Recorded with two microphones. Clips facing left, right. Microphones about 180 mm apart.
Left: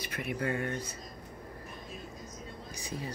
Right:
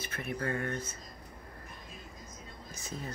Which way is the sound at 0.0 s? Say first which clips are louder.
Left 2 dB; 15° left (ahead or behind).